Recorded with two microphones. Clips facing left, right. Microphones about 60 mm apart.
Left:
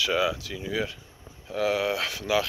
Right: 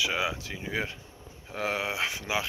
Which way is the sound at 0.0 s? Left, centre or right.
Centre.